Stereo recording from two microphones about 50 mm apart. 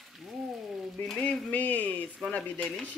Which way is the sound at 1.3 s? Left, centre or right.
Left.